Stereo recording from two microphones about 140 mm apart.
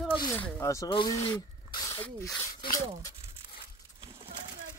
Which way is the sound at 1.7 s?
25° left (ahead or behind).